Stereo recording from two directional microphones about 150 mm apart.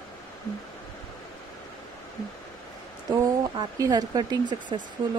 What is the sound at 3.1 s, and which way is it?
Speech, 25° right (ahead or behind).